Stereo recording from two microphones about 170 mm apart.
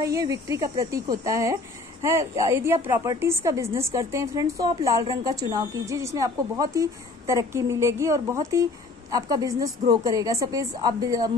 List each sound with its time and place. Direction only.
0.0 s speech: 20° right (ahead or behind)